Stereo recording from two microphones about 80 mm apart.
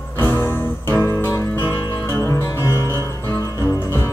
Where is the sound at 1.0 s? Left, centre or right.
Left.